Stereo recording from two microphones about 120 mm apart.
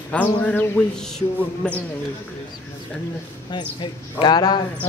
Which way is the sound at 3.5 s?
40° left (ahead or behind).